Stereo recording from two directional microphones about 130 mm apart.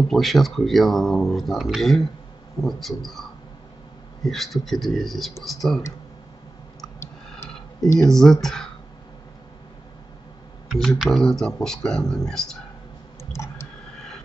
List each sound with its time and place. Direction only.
0.1 s speech: centre (ahead or behind)
8.1 s speech: 5° left (ahead or behind)
10.7 s speech: centre (ahead or behind)
13.2 s clicking: 20° left (ahead or behind)